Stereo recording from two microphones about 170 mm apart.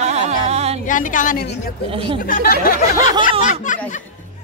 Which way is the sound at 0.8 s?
50° left (ahead or behind).